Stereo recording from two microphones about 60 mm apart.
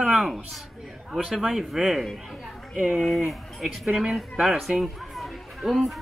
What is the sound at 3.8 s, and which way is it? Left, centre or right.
Speech, centre.